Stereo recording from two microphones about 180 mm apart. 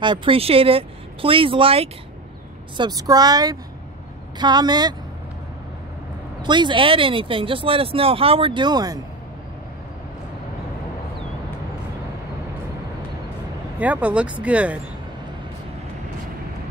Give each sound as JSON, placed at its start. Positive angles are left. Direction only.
{"t": 0.0, "sound": "speech", "side_deg": -25}
{"t": 6.4, "sound": "speech", "side_deg": -25}
{"t": 13.7, "sound": "speech", "side_deg": -10}